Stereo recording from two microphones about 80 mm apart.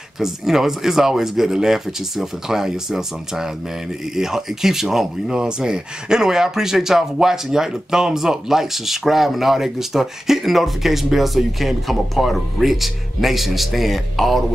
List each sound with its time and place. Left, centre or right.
0.2 s speech: centre